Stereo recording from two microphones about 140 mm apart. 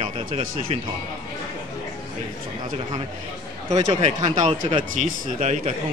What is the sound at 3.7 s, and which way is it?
A man's voice, 55° right (ahead or behind).